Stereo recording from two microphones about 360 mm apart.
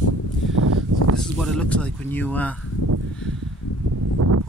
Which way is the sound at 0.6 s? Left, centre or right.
Right.